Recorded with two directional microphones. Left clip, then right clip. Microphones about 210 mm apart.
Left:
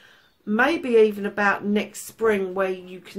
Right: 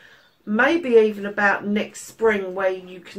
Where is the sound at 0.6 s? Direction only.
45° left (ahead or behind).